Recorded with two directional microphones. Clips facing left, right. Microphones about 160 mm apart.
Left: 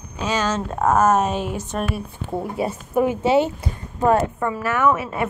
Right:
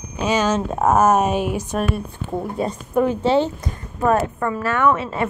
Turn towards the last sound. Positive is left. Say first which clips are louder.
# right 1 dB
turn(degrees=10)  # may be behind; listen again after turning